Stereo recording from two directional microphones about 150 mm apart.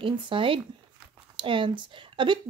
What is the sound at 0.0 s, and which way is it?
Speech, 35° right (ahead or behind).